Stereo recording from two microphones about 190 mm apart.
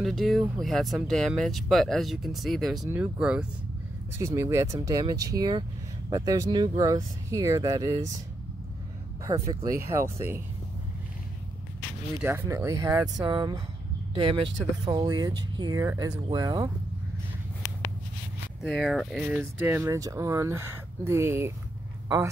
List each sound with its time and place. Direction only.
0.0 s speech: centre (ahead or behind); by 8.1 s 15° right (ahead or behind)
9.2 s speech: 15° right (ahead or behind)
12.2 s speech: 10° right (ahead or behind)
18.7 s speech: centre (ahead or behind); by 21.5 s 15° right (ahead or behind)